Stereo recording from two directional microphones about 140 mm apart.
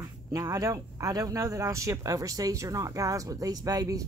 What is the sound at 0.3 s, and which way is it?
Speech, 25° right (ahead or behind).